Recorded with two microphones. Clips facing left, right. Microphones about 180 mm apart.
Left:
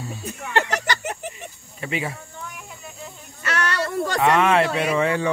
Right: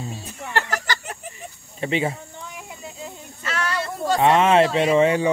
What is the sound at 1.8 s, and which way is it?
Snake, 25° right (ahead or behind).